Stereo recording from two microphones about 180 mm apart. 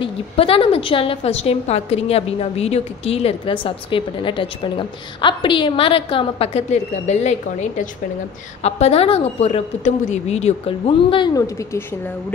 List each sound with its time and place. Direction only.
0.0 s a woman's voice: 30° left (ahead or behind)